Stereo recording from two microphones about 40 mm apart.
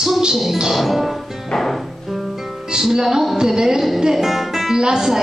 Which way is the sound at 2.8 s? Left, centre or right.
Centre.